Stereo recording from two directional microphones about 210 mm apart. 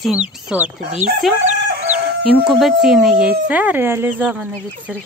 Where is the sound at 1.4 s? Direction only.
35° right (ahead or behind).